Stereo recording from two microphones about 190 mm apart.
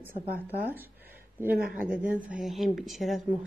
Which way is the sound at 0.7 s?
10° right (ahead or behind).